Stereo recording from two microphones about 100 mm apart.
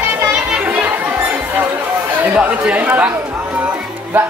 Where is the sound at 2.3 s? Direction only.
10° right (ahead or behind).